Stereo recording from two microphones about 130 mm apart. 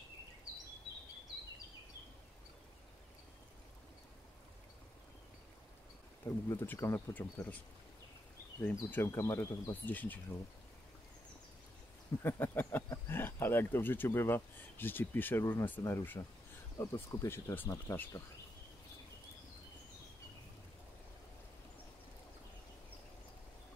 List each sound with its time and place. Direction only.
6.5 s speech: 15° left (ahead or behind)
8.5 s speech: 15° left (ahead or behind)
12.2 s speech: 15° left (ahead or behind)